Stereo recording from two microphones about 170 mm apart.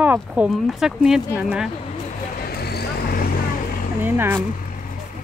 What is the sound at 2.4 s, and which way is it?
Vehicle, 70° left (ahead or behind).